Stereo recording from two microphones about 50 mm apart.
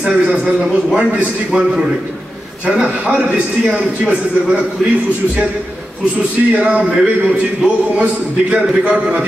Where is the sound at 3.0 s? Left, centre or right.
Right.